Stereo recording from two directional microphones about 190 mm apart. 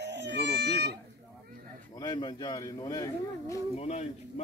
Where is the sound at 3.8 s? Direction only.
35° left (ahead or behind).